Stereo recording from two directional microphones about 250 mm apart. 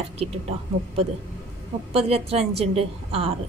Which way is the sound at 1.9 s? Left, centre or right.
Right.